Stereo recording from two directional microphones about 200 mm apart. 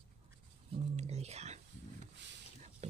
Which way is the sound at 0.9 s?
35° right (ahead or behind).